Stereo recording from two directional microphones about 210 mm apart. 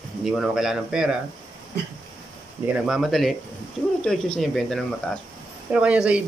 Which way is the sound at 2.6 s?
5° right (ahead or behind).